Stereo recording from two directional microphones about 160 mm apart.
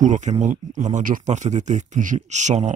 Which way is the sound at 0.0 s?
50° right (ahead or behind).